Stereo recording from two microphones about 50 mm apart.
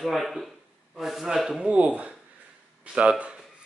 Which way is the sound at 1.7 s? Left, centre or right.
Right.